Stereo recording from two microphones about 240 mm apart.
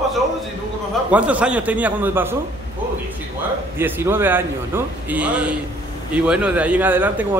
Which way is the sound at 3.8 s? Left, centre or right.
Centre.